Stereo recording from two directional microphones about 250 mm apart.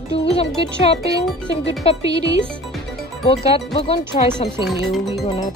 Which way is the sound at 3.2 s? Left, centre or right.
Left.